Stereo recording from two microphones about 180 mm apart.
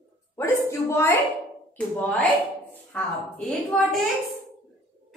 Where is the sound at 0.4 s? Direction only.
15° left (ahead or behind).